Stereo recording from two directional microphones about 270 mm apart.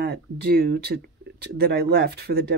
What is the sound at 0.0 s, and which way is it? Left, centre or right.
Speech, right.